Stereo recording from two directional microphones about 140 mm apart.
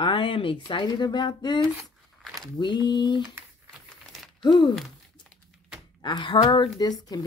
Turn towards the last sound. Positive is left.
turn(degrees=25)  # may be behind; listen again after turning